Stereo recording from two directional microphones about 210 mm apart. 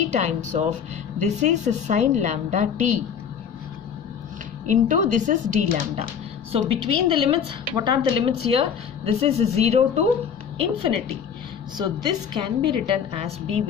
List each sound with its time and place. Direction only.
0.1 s a woman's voice: 35° right (ahead or behind)
4.6 s a woman's voice: 35° right (ahead or behind)
11.7 s a woman's voice: 20° right (ahead or behind)